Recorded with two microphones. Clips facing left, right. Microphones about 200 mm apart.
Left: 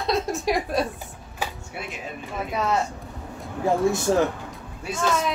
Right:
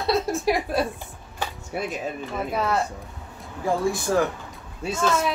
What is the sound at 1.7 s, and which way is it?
Speech, 45° right (ahead or behind).